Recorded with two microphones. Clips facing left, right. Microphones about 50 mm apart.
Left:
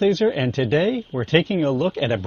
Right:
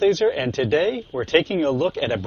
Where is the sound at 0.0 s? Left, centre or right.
Centre.